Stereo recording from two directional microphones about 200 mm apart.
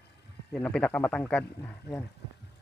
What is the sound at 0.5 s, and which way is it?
Speech, 5° left (ahead or behind).